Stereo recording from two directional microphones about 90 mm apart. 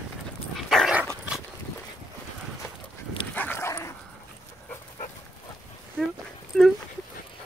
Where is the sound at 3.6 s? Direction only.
35° left (ahead or behind).